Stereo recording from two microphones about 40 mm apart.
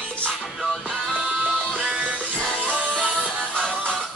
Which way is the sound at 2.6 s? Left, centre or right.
Centre.